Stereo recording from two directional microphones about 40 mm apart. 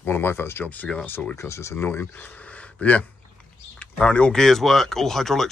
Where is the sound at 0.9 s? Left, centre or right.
Centre.